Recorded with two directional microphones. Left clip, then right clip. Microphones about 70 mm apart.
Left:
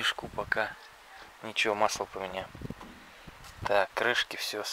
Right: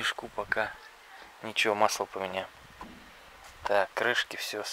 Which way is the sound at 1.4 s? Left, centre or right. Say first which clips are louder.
Right 2 dB; centre.